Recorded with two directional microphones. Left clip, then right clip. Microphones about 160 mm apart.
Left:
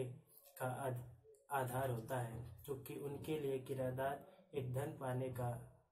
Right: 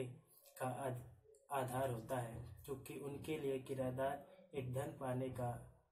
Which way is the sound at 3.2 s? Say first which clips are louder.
Even; 30° left (ahead or behind).